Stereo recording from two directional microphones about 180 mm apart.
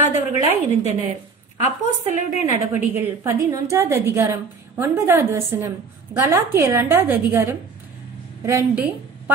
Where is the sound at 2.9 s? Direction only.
15° right (ahead or behind).